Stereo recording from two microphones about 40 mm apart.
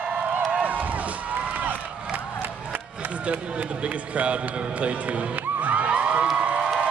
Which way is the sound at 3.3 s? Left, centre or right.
Right.